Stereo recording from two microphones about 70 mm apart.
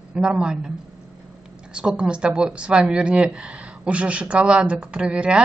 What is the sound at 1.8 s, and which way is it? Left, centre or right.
Speech, centre.